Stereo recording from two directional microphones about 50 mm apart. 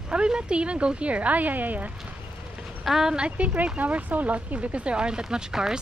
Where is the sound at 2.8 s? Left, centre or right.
Centre.